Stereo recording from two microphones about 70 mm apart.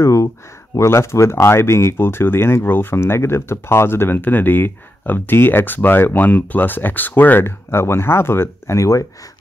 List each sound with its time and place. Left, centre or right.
0.0 s speech: left